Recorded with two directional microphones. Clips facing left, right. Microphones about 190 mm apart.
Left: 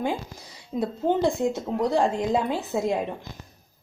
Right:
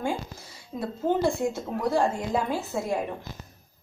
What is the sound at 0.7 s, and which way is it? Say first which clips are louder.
A woman's voice: left 2 dB; 20° left (ahead or behind).